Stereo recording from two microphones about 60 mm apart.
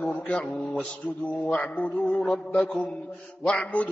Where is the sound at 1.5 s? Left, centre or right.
Left.